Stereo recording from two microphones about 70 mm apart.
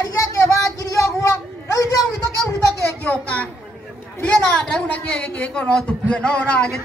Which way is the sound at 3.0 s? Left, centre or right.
Centre.